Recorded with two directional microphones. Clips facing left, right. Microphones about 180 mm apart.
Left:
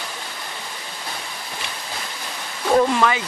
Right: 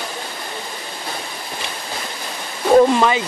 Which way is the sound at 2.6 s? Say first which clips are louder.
Right 5 dB; 25° right (ahead or behind).